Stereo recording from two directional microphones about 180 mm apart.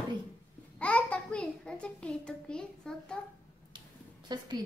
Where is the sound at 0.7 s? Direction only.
10° left (ahead or behind).